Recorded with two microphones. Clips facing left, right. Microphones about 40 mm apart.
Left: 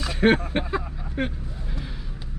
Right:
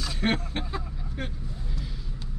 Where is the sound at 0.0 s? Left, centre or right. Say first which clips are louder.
Left 8 dB; left.